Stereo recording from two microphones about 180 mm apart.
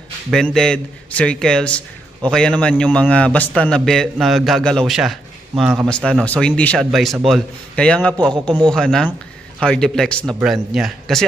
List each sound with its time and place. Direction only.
0.3 s speech: 5° left (ahead or behind)
8.2 s a man's voice: 25° right (ahead or behind)
8.7 s speech: 5° left (ahead or behind)